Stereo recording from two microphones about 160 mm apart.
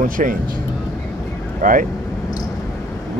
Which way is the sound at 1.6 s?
55° right (ahead or behind).